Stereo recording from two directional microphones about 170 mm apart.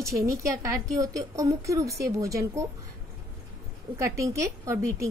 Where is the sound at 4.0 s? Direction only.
15° right (ahead or behind).